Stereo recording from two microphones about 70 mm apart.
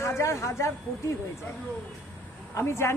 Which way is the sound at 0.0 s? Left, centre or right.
Left.